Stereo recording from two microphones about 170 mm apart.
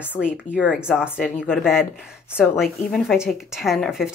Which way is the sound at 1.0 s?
10° left (ahead or behind).